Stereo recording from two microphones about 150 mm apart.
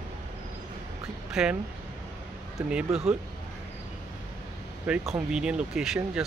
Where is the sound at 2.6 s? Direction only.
5° right (ahead or behind).